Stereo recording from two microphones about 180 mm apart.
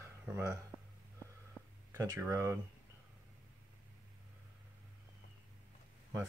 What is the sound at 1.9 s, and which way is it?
Speech, 15° right (ahead or behind).